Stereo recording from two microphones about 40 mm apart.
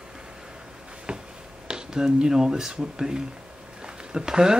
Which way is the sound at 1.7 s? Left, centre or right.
Centre.